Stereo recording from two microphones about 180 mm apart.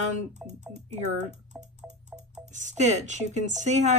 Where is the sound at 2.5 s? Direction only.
45° right (ahead or behind).